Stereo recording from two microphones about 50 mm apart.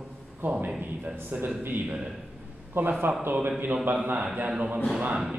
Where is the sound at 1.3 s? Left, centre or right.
Right.